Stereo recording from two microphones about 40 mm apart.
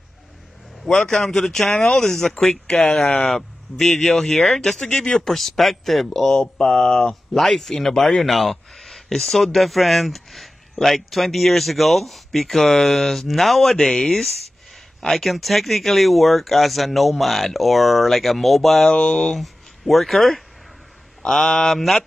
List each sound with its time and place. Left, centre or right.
0.8 s speech: centre
18.9 s speech: left
19.3 s speech: centre